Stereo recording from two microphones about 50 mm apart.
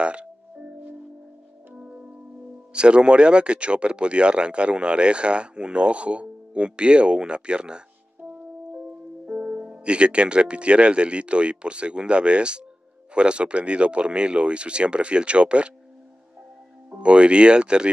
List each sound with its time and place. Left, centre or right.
0.0 s speech: right
1.7 s music: centre
2.7 s speech: centre
16.9 s speech: right